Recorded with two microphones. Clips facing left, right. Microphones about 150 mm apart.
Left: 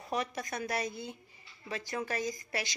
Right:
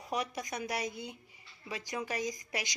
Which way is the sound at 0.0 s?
15° right (ahead or behind).